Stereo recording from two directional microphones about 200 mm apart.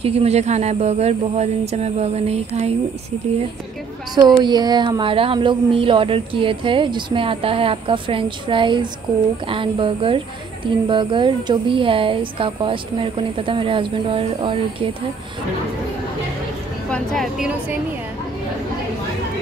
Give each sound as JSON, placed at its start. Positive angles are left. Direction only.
{"t": 0.0, "sound": "speech", "side_deg": -30}
{"t": 4.4, "sound": "speech", "side_deg": -20}
{"t": 16.9, "sound": "speech", "side_deg": 0}